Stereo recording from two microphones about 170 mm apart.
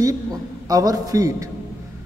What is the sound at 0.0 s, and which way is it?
A man's voice, 20° right (ahead or behind).